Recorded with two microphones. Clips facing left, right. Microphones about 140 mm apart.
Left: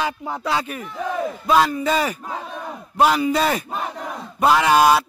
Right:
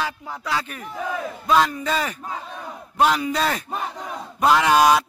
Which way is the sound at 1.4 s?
5° left (ahead or behind).